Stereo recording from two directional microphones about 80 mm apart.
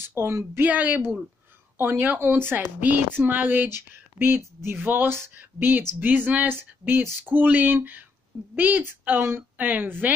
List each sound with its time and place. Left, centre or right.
0.0 s a woman's voice: right
0.6 s a woman's voice: centre